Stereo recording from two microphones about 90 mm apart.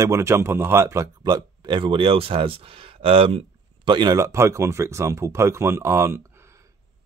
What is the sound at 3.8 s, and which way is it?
Speech, 55° right (ahead or behind).